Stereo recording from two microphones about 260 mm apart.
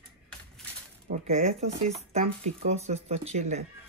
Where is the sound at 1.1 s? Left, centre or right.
Right.